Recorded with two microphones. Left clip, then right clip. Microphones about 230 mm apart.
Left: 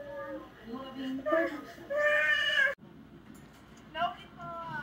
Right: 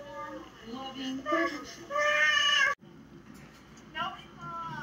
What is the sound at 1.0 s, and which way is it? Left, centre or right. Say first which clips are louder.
Speech: left 1 dB; centre.